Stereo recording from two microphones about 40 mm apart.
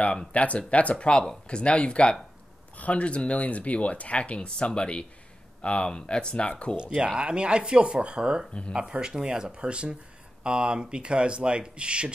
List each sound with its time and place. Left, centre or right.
0.0 s speech: left
6.8 s speech: right